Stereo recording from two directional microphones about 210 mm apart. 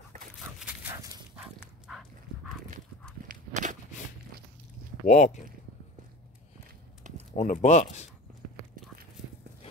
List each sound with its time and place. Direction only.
0.1 s dog: 35° right (ahead or behind)
0.6 s dog: 10° right (ahead or behind)
3.3 s walk: 35° right (ahead or behind)
5.0 s speech: 35° left (ahead or behind)
7.0 s a sound: 35° right (ahead or behind)
7.3 s speech: 30° left (ahead or behind)